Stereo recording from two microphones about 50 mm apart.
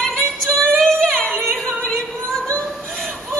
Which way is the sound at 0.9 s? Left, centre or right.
Centre.